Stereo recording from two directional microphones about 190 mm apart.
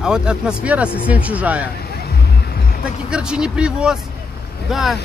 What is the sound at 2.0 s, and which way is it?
Music, 55° left (ahead or behind).